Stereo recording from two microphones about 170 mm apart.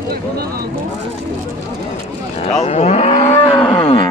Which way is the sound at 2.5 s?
40° left (ahead or behind).